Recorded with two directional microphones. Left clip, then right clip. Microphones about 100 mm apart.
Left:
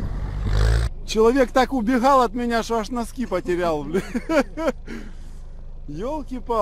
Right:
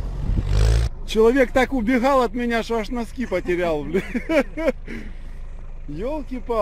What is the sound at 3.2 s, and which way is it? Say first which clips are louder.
Speech: right 1 dB; 15° left (ahead or behind).